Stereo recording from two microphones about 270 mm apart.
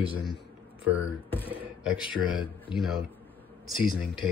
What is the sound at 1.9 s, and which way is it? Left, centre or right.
Speech, centre.